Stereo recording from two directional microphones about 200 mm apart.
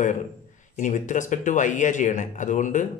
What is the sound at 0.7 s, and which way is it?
A man's voice, 40° left (ahead or behind).